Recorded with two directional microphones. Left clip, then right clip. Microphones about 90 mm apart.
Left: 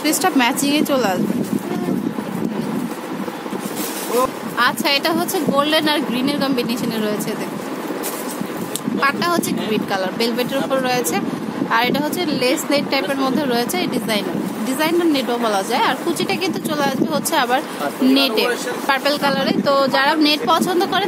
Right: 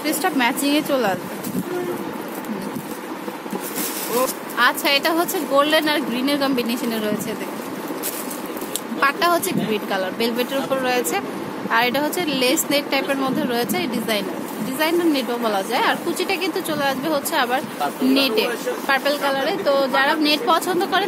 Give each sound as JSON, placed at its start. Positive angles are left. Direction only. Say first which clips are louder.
{"t": 0.0, "sound": "a woman's voice", "louder": "left 3 dB", "side_deg": 40}
{"t": 4.6, "sound": "speech", "louder": "even", "side_deg": 0}
{"t": 9.0, "sound": "speech", "louder": "right 1 dB", "side_deg": 5}
{"t": 12.3, "sound": "a woman's voice", "louder": "left 3 dB", "side_deg": -5}
{"t": 19.0, "sound": "speech", "louder": "left 2 dB", "side_deg": 45}
{"t": 20.4, "sound": "a woman's voice", "louder": "left 2 dB", "side_deg": 25}